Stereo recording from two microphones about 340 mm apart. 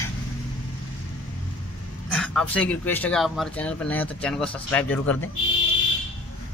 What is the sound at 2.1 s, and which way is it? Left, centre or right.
Speech, centre.